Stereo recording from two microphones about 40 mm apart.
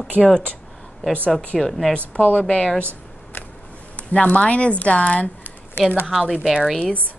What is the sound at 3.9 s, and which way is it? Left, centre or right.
Speech, left.